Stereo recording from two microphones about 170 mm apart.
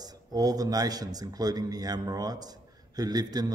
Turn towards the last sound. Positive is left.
turn(degrees=-25)  # may be behind; listen again after turning